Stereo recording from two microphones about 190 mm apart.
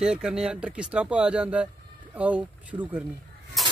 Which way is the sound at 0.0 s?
5° right (ahead or behind).